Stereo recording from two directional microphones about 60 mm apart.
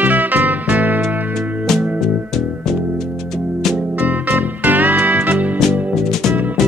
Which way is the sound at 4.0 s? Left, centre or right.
Right.